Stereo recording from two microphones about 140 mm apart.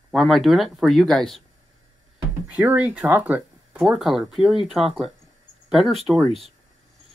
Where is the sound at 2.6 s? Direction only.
10° right (ahead or behind).